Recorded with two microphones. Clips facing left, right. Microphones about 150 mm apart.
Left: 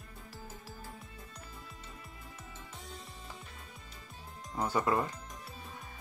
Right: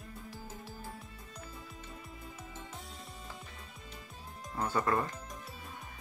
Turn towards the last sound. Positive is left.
turn(degrees=10)  # may be behind; listen again after turning